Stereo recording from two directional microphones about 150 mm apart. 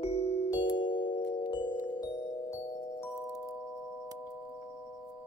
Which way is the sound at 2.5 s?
20° left (ahead or behind).